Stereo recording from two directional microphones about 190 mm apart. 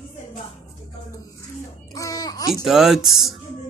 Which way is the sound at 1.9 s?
20° left (ahead or behind).